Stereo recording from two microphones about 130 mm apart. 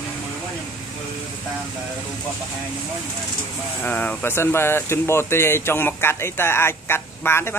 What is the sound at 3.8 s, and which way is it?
Speech, 10° left (ahead or behind).